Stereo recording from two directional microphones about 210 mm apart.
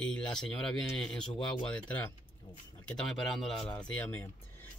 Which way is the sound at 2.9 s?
Centre (ahead or behind).